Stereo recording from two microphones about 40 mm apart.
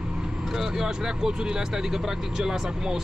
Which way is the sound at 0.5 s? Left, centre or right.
Centre.